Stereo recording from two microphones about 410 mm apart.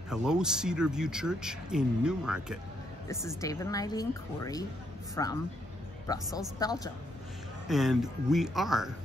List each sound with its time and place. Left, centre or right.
0.1 s a woman's voice: centre